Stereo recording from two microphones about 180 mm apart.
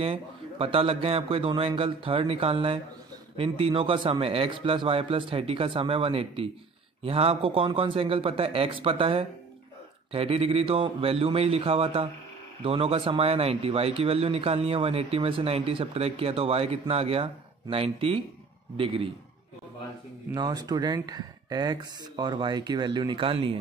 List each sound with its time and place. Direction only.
0.0 s speech: 30° right (ahead or behind)
20.3 s speech: 20° right (ahead or behind)